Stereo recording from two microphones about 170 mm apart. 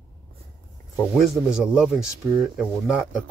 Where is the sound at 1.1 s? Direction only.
Centre (ahead or behind).